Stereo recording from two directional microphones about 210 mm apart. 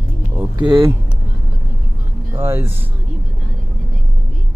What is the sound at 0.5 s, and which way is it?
Speech, 25° right (ahead or behind).